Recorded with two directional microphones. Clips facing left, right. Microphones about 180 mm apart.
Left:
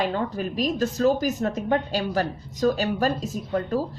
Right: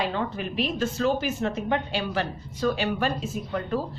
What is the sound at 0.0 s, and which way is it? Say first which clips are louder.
A woman's voice: left 3 dB; 45° left (ahead or behind).